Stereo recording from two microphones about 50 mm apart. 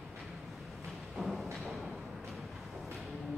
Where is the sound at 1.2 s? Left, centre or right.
Centre.